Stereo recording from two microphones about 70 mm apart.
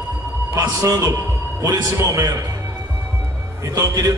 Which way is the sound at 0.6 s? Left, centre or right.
Right.